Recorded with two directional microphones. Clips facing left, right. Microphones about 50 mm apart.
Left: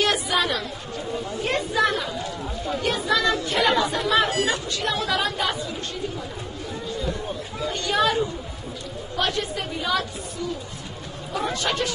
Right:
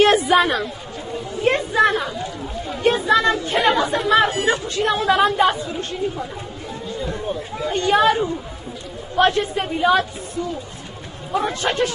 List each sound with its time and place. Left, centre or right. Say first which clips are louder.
0.0 s a sound: right 8 dB; right
1.4 s speech: right 6 dB; right
7.7 s a man's voice: right 6 dB; right